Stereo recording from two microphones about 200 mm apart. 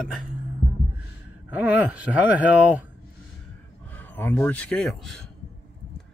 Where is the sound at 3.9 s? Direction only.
10° left (ahead or behind).